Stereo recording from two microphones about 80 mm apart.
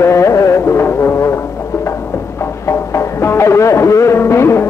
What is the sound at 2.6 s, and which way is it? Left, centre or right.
Music, left.